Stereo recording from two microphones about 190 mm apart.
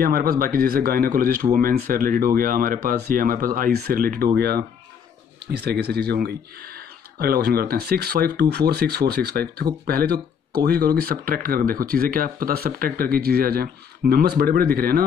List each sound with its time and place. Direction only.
0.0 s speech: 50° right (ahead or behind)